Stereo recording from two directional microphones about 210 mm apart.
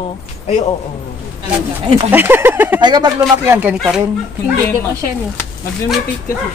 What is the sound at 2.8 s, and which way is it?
Speech, 20° right (ahead or behind).